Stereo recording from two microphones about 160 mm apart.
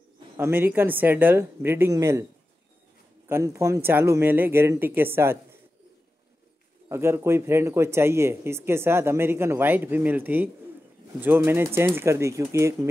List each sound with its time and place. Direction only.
0.4 s speech: 15° right (ahead or behind)
3.3 s speech: 15° right (ahead or behind)
6.9 s speech: 15° right (ahead or behind)